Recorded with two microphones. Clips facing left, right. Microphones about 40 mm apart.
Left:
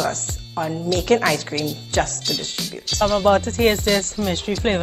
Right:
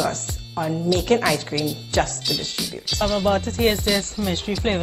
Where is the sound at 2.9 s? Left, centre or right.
Right.